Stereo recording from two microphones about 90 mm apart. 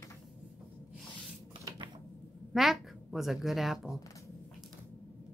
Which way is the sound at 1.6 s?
55° right (ahead or behind).